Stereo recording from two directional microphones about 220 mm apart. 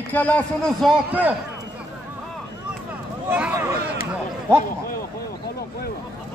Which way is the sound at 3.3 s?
5° right (ahead or behind).